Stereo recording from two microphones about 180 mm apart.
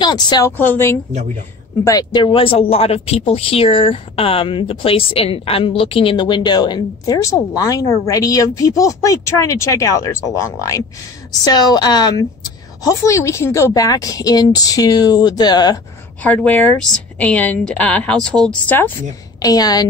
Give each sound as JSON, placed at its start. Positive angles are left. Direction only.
{"t": 0.0, "sound": "a woman's voice", "side_deg": 25}
{"t": 1.9, "sound": "speech", "side_deg": 20}
{"t": 16.2, "sound": "a woman's voice", "side_deg": 10}
{"t": 19.4, "sound": "speech", "side_deg": 20}